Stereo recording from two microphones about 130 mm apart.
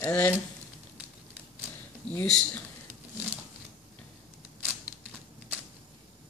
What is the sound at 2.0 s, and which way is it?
Speech, 10° left (ahead or behind).